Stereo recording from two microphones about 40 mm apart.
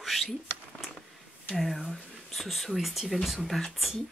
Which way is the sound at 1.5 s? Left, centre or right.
Centre.